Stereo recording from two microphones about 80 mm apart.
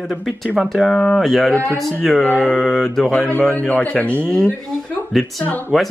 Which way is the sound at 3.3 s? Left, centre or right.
Centre.